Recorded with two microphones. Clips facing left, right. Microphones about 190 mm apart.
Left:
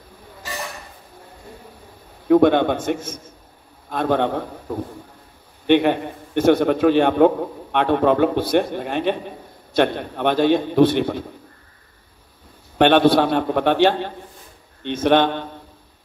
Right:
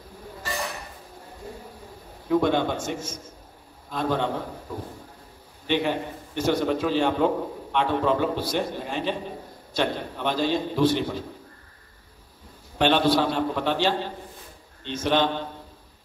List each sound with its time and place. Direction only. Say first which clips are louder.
2.2 s a man's voice: left 8 dB; 60° left (ahead or behind)
12.7 s a man's voice: left 7 dB; 60° left (ahead or behind)